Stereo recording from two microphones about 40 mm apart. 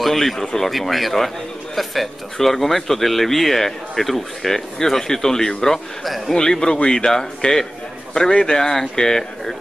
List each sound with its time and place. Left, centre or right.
0.0 s speech: centre
6.0 s speech: centre
6.3 s a man's voice: centre